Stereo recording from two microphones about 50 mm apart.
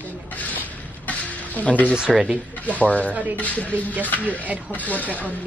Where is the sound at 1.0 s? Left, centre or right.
Left.